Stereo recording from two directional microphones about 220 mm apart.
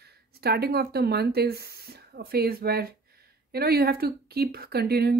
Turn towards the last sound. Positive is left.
turn(degrees=-45)  # may be behind; listen again after turning